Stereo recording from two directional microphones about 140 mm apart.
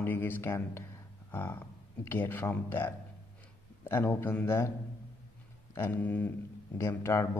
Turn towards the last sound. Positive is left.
turn(degrees=20)  # may be behind; listen again after turning